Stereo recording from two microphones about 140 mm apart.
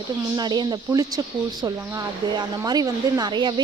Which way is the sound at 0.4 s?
30° right (ahead or behind).